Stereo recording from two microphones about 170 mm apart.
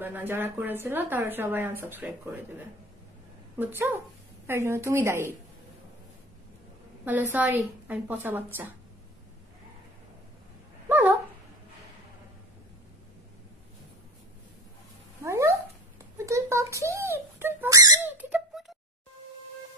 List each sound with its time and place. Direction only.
0.0 s speech: 10° right (ahead or behind)
4.5 s speech: 15° right (ahead or behind)
7.1 s speech: 10° right (ahead or behind)
10.9 s dog: 10° right (ahead or behind)
15.2 s cat: 15° right (ahead or behind)
16.3 s a sound: 15° right (ahead or behind)
18.1 s squeak: 5° right (ahead or behind)